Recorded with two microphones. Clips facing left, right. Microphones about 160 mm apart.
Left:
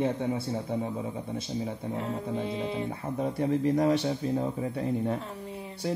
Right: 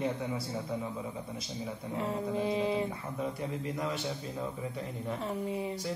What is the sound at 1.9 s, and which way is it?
Mantra, 5° right (ahead or behind).